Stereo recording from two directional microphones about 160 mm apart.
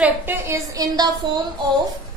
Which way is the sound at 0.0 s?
15° right (ahead or behind).